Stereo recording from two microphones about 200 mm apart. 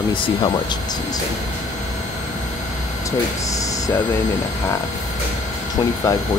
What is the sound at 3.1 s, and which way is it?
Speech, 15° left (ahead or behind).